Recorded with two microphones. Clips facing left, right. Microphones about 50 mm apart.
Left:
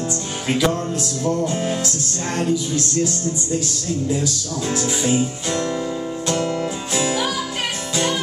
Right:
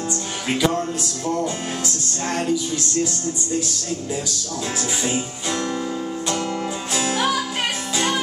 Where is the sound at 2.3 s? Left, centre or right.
Centre.